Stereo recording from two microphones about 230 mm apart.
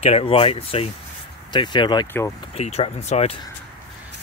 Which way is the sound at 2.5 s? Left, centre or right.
Left.